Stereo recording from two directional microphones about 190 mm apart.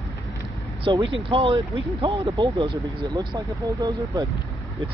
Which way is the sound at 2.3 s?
20° right (ahead or behind).